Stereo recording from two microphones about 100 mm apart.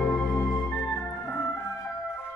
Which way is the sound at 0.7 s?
5° left (ahead or behind).